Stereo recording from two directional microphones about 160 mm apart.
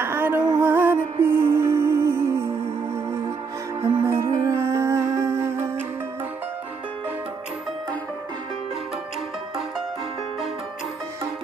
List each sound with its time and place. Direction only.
0.0 s music: 15° right (ahead or behind)
3.8 s music: 15° right (ahead or behind)